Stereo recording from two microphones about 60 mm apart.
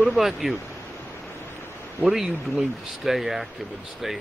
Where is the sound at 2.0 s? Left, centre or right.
Centre.